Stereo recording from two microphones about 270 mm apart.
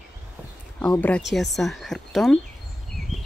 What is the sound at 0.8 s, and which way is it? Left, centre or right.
Speech, centre.